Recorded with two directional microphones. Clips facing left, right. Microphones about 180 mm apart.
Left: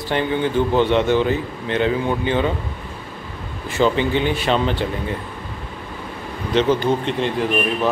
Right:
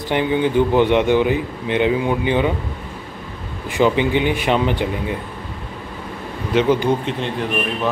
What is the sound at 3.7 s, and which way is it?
A man's voice, 15° right (ahead or behind).